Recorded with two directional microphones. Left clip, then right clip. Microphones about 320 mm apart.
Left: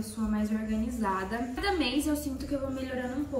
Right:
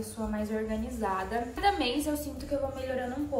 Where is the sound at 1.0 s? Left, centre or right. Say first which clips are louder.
Right 1 dB; centre.